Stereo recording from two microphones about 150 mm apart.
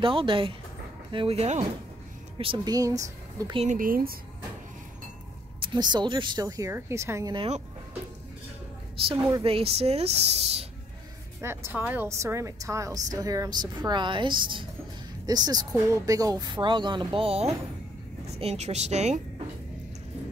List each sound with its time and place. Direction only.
0.0 s speech: 35° right (ahead or behind)
2.3 s speech: 35° right (ahead or behind)
3.7 s speech: 70° right (ahead or behind)
5.6 s a woman's voice: 30° right (ahead or behind)
7.3 s speech: 45° right (ahead or behind)
9.4 s speech: 40° right (ahead or behind)
11.4 s a woman's voice: 15° right (ahead or behind); by 19.2 s 50° right (ahead or behind)